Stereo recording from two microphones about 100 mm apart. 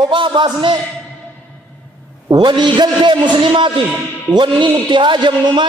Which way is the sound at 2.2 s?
45° right (ahead or behind).